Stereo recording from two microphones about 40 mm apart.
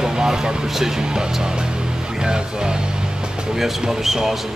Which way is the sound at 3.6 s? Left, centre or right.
Centre.